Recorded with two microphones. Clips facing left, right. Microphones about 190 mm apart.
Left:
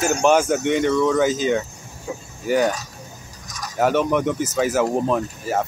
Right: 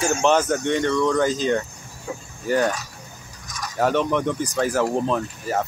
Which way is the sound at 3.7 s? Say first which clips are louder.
Left 2 dB; 5° left (ahead or behind).